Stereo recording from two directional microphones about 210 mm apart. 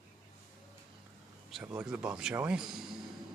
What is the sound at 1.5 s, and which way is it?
Speech, 5° right (ahead or behind).